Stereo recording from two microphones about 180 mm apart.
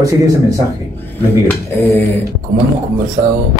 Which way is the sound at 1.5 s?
10° left (ahead or behind).